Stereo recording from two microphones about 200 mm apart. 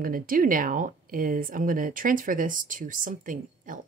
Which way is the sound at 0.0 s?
45° right (ahead or behind).